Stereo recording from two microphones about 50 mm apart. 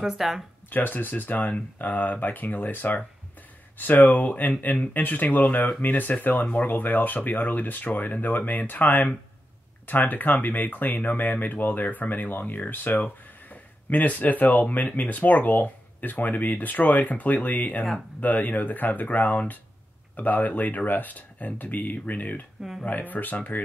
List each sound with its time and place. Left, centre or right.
0.0 s speech: centre
0.7 s speech: left